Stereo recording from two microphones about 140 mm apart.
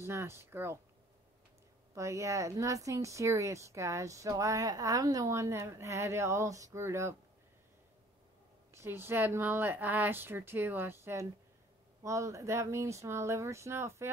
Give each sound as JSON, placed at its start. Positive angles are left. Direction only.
{"t": 0.0, "sound": "speech", "side_deg": -20}
{"t": 2.0, "sound": "speech", "side_deg": -20}
{"t": 8.7, "sound": "speech", "side_deg": -20}